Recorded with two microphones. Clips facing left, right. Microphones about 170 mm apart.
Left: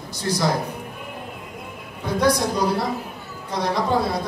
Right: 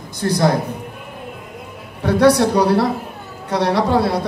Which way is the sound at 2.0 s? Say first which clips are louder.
Right 7 dB; 70° right (ahead or behind).